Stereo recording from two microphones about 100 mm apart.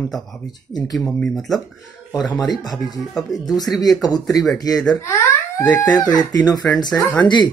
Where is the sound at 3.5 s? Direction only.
40° left (ahead or behind).